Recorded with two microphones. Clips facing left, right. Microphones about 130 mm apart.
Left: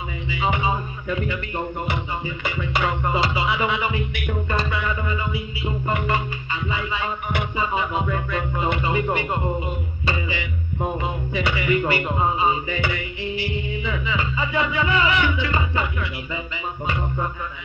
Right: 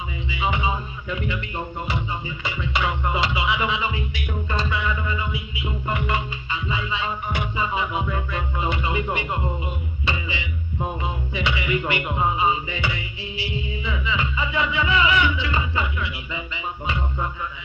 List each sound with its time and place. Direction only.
0.3 s music: 50° left (ahead or behind)